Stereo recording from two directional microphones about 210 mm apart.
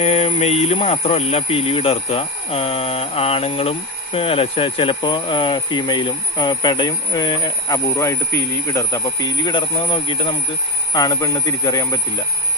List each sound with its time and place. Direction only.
0.0 s speech: 30° left (ahead or behind)